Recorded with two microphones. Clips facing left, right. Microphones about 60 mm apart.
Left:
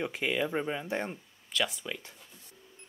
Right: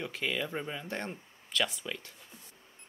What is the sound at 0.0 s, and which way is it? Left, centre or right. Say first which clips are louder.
Speech: left 4 dB; centre.